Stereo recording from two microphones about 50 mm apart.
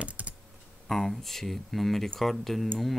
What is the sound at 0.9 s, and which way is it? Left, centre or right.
Speech, centre.